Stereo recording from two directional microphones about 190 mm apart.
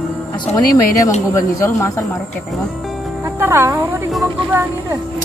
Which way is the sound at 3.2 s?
10° right (ahead or behind).